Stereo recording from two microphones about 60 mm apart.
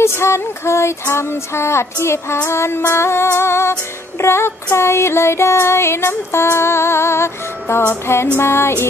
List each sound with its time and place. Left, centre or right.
0.0 s music: left